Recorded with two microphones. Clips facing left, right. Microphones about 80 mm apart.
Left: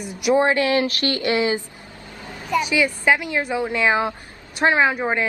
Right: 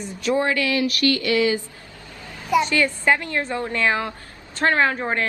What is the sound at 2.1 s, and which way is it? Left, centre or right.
Vehicle, left.